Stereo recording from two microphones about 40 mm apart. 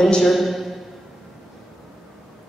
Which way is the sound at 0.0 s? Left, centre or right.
Centre.